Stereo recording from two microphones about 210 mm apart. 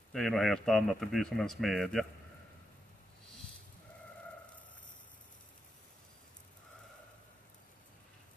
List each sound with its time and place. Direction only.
0.1 s speech: centre (ahead or behind)